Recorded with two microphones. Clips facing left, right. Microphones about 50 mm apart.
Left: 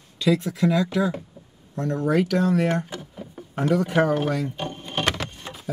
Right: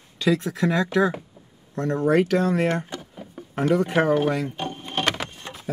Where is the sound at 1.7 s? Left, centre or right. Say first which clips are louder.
Right 2 dB; right.